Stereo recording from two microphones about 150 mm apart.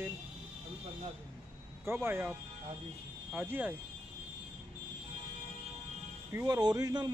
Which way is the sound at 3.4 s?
15° right (ahead or behind).